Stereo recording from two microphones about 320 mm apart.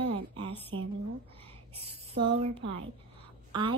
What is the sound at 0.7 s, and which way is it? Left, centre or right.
Speech, right.